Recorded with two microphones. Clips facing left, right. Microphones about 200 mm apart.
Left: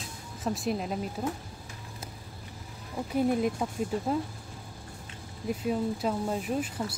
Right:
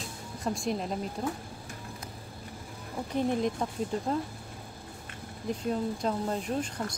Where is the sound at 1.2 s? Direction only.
5° left (ahead or behind).